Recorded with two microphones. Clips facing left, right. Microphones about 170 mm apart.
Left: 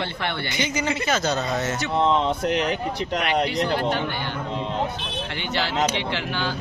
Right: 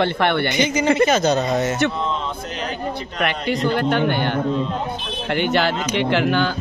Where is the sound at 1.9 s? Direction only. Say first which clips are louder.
Left 4 dB; 70° left (ahead or behind).